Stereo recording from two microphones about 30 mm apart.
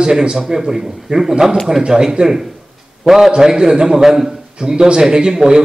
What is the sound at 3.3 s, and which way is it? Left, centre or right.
A man's voice, right.